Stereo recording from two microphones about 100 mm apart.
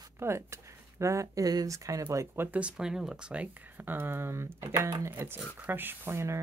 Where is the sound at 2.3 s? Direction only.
20° right (ahead or behind).